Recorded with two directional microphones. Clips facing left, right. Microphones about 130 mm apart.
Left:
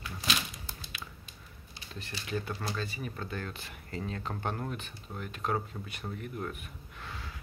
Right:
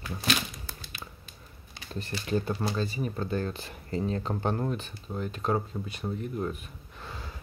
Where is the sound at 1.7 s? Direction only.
45° right (ahead or behind).